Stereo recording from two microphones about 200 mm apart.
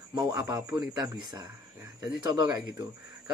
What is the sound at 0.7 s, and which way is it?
Speech, 15° right (ahead or behind).